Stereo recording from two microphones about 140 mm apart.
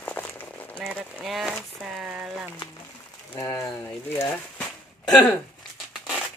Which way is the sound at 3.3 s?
20° left (ahead or behind).